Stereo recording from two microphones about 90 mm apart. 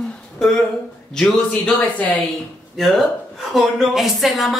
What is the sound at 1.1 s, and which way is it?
Speech, 5° left (ahead or behind).